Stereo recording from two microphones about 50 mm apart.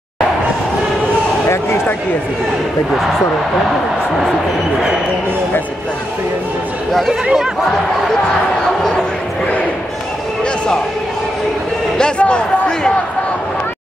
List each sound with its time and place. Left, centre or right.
6.9 s speech: centre
12.0 s speech: left